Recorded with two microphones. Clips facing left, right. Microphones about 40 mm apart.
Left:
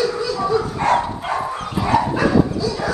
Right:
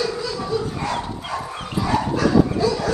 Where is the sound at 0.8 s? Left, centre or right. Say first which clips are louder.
Left 8 dB; left.